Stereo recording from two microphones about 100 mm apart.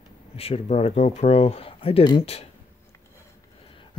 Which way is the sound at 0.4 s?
90° left.